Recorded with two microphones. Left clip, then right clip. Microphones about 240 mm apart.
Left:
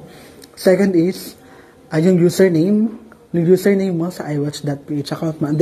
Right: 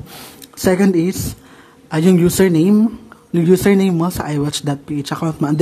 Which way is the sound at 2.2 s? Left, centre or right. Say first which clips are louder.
Even; centre.